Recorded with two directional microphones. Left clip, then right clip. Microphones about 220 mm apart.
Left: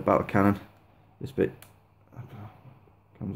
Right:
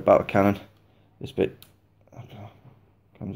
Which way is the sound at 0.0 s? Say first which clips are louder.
Right 5 dB; 10° left (ahead or behind).